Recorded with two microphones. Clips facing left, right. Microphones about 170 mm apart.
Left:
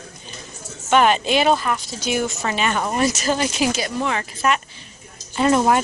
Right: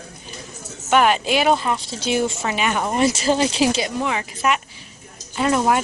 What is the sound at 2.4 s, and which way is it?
Speech, 10° right (ahead or behind).